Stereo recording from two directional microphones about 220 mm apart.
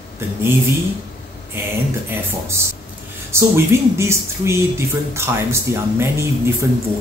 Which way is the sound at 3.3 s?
10° right (ahead or behind).